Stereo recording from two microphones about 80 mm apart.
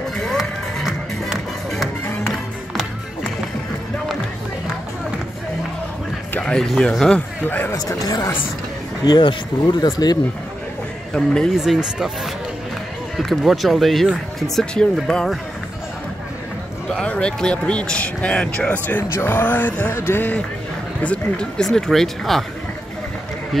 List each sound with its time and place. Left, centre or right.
0.2 s music: centre
6.4 s a man's voice: centre
7.2 s speech: left
7.7 s speech: left
9.0 s speech: left
11.5 s speech: centre
13.2 s speech: centre
17.0 s a man's voice: centre; by 20.3 s left
21.0 s speech: centre